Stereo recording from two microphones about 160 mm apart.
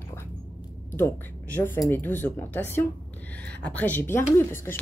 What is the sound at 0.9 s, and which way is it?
Speech, 15° left (ahead or behind).